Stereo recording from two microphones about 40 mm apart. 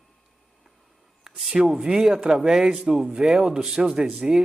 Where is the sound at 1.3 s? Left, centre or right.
Centre.